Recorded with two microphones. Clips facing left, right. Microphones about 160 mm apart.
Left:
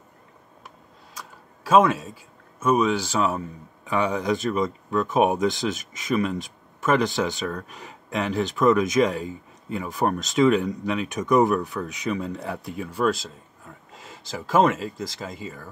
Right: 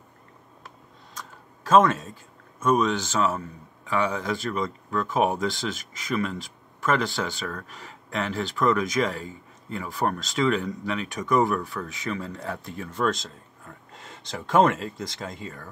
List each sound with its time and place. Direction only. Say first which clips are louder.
1.1 s a sound: even; 5° left (ahead or behind)
2.6 s speech: left 1 dB; 5° left (ahead or behind)
7.4 s speech: left 4 dB; centre (ahead or behind)
7.8 s speech: left 2 dB; 15° left (ahead or behind)
12.3 s speech: left 3 dB; 5° left (ahead or behind)